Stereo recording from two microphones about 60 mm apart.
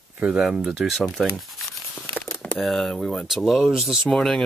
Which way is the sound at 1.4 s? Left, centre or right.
Centre.